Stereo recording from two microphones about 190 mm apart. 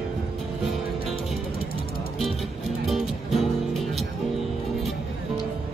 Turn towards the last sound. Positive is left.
turn(degrees=0)  # may be behind; listen again after turning